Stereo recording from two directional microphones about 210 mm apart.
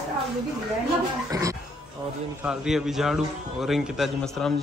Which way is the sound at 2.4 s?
5° right (ahead or behind).